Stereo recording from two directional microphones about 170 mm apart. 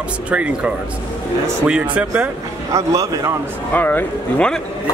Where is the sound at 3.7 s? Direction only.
10° left (ahead or behind).